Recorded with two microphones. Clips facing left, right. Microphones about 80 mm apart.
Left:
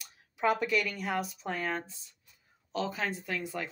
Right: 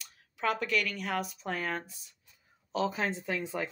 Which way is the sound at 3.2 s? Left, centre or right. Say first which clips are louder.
Right 2 dB; centre.